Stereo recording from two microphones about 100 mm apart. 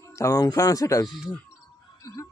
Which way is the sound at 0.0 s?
30° left (ahead or behind).